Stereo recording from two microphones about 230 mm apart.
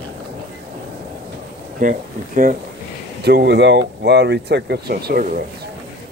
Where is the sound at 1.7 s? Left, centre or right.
Right.